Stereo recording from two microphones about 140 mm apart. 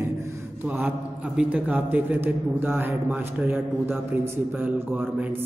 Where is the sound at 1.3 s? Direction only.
10° right (ahead or behind).